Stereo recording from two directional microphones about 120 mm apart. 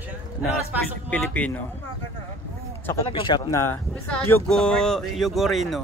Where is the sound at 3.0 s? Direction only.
45° left (ahead or behind).